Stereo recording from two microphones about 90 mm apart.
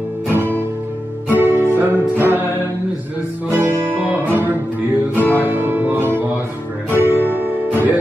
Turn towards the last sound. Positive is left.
turn(degrees=25)  # may be behind; listen again after turning